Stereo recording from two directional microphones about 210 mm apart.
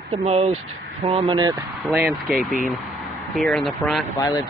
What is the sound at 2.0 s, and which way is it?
Speech, centre (ahead or behind).